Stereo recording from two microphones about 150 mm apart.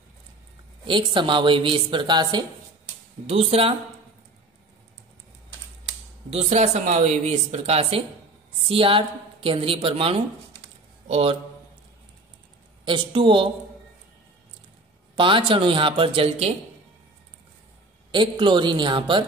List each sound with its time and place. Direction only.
0.8 s a woman's voice: 35° right (ahead or behind)
3.3 s speech: 45° right (ahead or behind)
6.3 s a woman's voice: 50° right (ahead or behind)
12.8 s a woman's voice: 30° right (ahead or behind)
15.1 s a woman's voice: 35° right (ahead or behind)
18.1 s a woman's voice: 30° right (ahead or behind)